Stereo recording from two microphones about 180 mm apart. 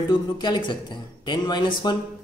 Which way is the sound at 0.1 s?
25° left (ahead or behind).